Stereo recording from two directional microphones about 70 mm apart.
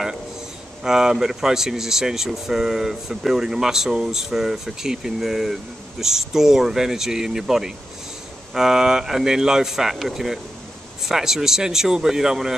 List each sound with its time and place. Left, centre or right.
0.8 s speech: centre